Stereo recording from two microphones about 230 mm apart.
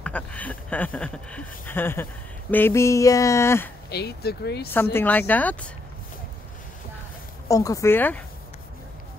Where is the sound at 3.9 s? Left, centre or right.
Left.